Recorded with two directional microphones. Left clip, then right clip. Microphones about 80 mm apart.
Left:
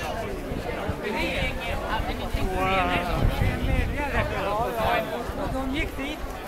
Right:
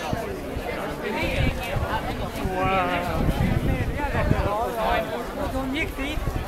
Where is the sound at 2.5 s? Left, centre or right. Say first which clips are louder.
Right 1 dB; left.